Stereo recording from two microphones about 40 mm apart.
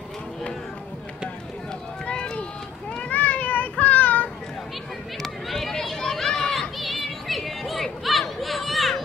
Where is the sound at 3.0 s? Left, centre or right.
Left.